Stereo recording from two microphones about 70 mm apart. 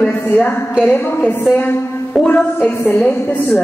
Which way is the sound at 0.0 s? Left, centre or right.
Centre.